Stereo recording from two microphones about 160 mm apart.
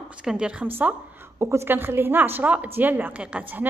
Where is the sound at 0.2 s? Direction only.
5° right (ahead or behind).